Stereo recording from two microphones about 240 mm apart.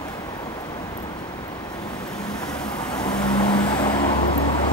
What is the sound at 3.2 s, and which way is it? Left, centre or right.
Vehicle, centre.